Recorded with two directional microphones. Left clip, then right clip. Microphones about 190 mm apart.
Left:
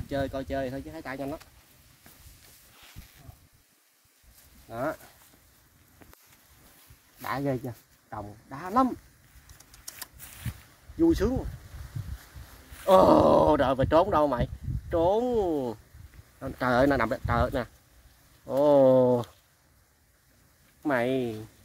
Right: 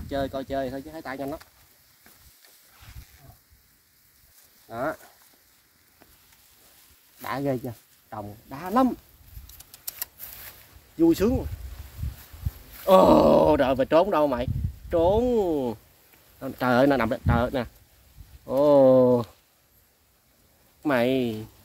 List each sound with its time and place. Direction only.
0.1 s speech: 20° left (ahead or behind)
4.6 s speech: 15° left (ahead or behind)
7.2 s speech: 10° right (ahead or behind)
9.5 s bird: 30° right (ahead or behind)
11.0 s speech: 20° right (ahead or behind)
12.8 s speech: 15° right (ahead or behind)
20.8 s speech: 40° right (ahead or behind)